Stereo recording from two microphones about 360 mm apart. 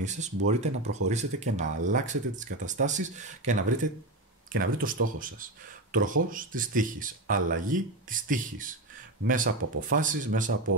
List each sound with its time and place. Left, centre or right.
0.0 s speech: centre